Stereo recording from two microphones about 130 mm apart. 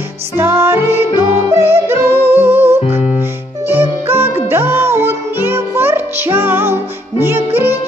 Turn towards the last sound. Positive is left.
turn(degrees=-15)  # may be behind; listen again after turning